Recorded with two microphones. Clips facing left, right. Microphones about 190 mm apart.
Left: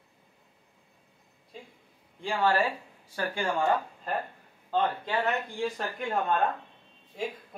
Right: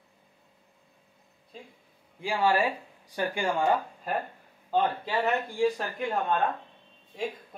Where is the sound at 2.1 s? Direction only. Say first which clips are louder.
Right 1 dB; 10° right (ahead or behind).